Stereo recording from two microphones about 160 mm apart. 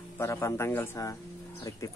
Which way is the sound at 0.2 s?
15° left (ahead or behind).